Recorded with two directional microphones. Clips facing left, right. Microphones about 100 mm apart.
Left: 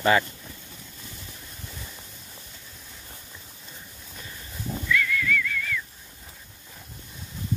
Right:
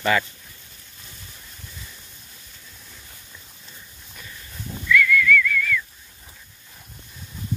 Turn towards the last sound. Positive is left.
turn(degrees=30)  # may be behind; listen again after turning